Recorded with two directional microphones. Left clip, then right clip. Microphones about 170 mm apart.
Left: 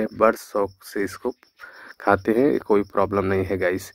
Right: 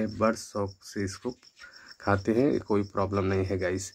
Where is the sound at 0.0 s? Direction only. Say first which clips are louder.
Left 8 dB; 50° left (ahead or behind).